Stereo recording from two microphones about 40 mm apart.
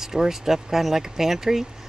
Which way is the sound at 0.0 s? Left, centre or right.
Centre.